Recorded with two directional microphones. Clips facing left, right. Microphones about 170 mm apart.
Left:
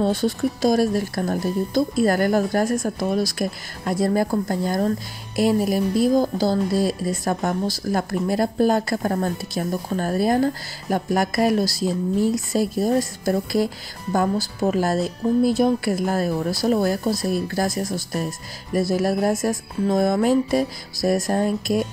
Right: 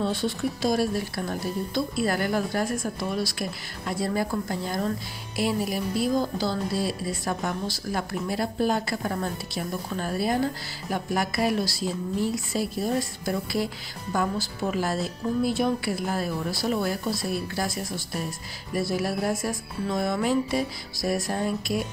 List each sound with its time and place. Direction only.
0.0 s speech: 40° left (ahead or behind)